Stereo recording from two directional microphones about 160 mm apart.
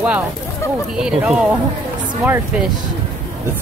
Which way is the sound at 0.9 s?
5° right (ahead or behind).